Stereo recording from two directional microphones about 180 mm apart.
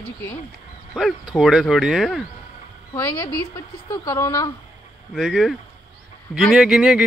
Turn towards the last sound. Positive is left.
turn(degrees=-5)  # may be behind; listen again after turning